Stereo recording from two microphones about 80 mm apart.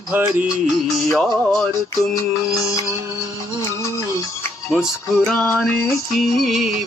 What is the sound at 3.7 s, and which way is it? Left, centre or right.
Music, left.